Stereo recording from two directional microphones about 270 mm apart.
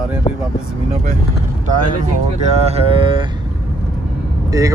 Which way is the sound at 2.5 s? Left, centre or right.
Right.